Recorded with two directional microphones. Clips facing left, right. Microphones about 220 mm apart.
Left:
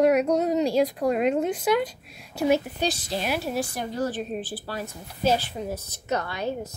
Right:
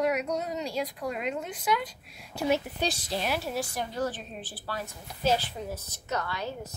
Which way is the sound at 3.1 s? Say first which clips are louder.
Left 3 dB; 5° left (ahead or behind).